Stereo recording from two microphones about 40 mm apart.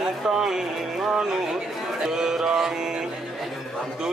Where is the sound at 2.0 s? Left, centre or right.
Centre.